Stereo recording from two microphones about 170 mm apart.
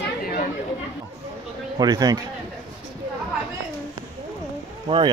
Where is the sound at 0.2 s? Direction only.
55° left (ahead or behind).